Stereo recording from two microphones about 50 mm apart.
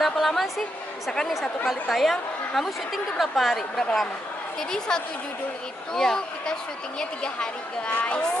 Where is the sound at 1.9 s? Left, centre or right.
Centre.